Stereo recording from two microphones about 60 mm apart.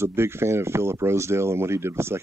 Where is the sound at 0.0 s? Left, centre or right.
Right.